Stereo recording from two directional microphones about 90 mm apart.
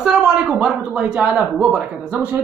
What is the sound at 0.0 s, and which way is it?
Speech, 5° right (ahead or behind).